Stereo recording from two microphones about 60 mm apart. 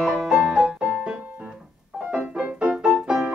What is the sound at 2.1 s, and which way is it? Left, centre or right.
Music, centre.